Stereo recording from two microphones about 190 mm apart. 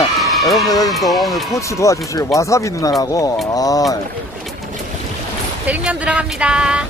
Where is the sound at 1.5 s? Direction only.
15° left (ahead or behind).